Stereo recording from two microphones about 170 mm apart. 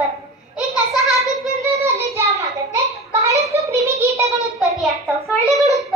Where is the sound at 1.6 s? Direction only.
15° right (ahead or behind).